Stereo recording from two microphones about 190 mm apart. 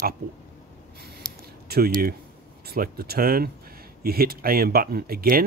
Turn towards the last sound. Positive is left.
turn(degrees=-50)  # may be behind; listen again after turning